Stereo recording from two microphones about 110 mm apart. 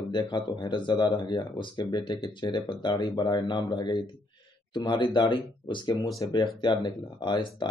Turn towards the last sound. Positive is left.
turn(degrees=45)  # may be behind; listen again after turning